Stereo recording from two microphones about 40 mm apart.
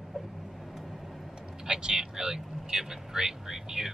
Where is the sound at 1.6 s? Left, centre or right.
Centre.